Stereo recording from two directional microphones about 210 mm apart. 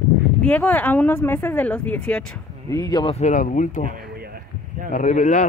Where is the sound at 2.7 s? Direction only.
20° left (ahead or behind).